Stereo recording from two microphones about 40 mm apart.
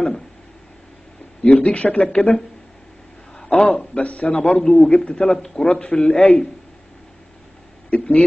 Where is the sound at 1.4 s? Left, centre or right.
Left.